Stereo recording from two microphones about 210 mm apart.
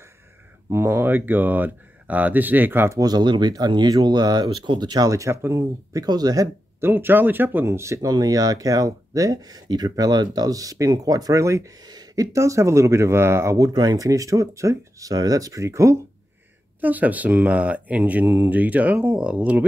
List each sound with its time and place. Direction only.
0.7 s speech: 10° right (ahead or behind)